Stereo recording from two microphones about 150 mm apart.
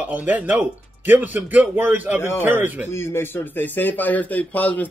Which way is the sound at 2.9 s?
15° left (ahead or behind).